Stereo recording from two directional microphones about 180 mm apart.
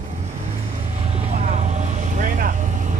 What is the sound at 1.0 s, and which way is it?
Vehicle, 40° right (ahead or behind).